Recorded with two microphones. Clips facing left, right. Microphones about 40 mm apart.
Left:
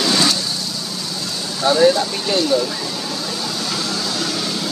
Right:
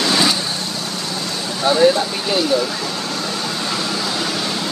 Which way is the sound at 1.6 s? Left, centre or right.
Centre.